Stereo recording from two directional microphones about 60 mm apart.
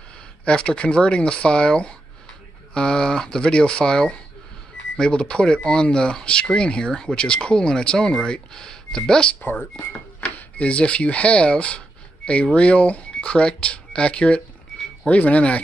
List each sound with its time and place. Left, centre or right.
0.5 s speech: centre
9.4 s speech: left